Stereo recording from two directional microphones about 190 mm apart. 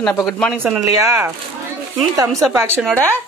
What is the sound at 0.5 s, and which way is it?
Speech, 10° right (ahead or behind).